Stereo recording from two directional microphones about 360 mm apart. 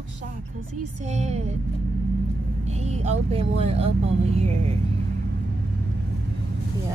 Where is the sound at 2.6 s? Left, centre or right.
Centre.